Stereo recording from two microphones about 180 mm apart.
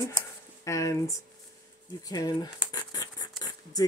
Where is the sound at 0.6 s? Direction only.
15° left (ahead or behind).